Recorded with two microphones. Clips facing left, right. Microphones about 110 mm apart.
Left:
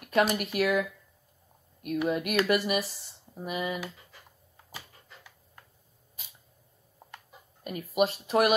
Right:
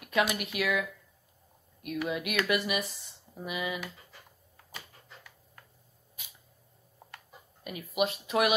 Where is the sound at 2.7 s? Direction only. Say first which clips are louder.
Left 3 dB; centre (ahead or behind).